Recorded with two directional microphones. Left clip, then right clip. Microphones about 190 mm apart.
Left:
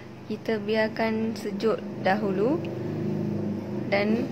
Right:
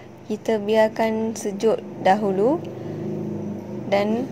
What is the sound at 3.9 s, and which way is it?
Speech, 20° right (ahead or behind).